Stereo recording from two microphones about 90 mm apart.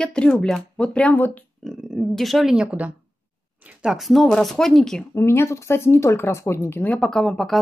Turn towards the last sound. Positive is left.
turn(degrees=0)  # may be behind; listen again after turning